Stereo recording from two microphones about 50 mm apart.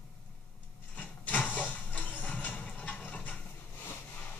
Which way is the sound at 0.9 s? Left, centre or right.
Left.